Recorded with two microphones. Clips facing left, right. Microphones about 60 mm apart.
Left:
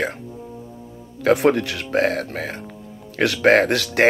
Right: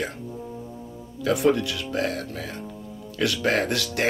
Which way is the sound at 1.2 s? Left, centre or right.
Left.